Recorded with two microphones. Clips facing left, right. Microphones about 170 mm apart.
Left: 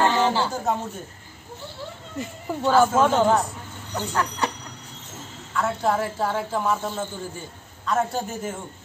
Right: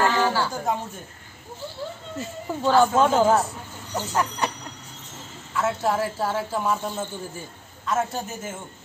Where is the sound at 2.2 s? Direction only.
15° left (ahead or behind).